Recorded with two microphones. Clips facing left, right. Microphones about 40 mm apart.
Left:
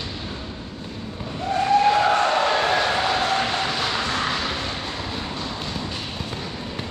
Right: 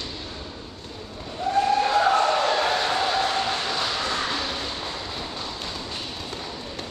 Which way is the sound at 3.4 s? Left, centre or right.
Left.